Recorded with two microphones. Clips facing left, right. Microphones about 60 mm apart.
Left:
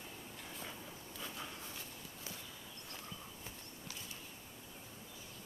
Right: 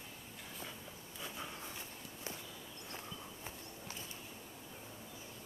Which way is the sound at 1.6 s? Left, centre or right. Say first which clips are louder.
Right 2 dB; right.